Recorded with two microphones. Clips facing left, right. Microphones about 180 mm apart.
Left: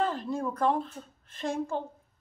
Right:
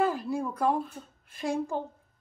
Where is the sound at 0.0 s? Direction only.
10° right (ahead or behind).